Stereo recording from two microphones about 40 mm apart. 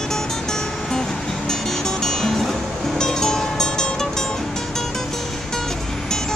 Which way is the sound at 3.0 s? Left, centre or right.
Centre.